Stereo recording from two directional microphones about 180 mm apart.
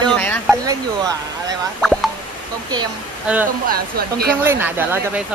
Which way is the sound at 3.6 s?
55° right (ahead or behind).